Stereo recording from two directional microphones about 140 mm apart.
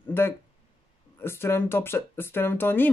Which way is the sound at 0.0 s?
15° left (ahead or behind).